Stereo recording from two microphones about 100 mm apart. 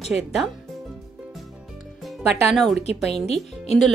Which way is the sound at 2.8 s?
90° left.